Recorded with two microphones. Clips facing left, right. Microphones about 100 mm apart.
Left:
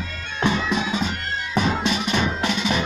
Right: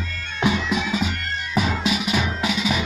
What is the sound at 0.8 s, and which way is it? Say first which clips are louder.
Music: even; 35° left (ahead or behind).